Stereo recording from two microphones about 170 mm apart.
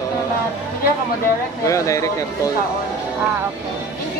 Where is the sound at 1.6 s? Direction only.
20° left (ahead or behind).